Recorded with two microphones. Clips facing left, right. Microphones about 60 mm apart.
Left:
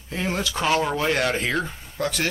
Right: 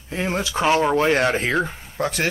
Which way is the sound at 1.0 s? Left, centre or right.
Right.